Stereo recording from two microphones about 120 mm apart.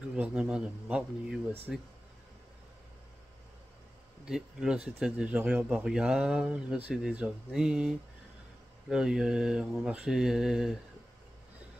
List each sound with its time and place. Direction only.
0.1 s speech: 10° right (ahead or behind)
4.3 s speech: 5° right (ahead or behind)